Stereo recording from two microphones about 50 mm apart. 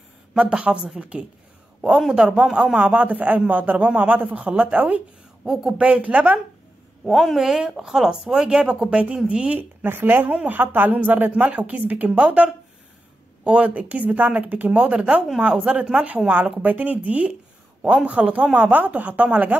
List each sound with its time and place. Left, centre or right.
0.4 s a man's voice: right
5.4 s speech: centre
5.8 s speech: right
7.1 s speech: centre
9.8 s a man's voice: right